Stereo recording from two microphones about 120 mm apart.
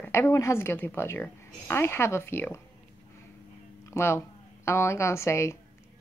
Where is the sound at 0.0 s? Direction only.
20° left (ahead or behind).